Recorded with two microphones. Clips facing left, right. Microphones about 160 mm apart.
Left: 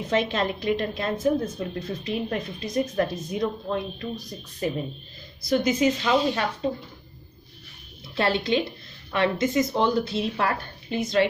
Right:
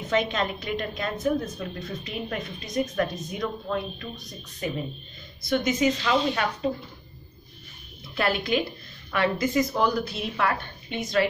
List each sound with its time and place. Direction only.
0.1 s a woman's voice: 30° left (ahead or behind)
8.1 s speech: 25° left (ahead or behind)